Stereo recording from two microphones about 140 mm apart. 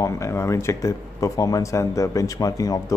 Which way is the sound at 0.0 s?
20° left (ahead or behind).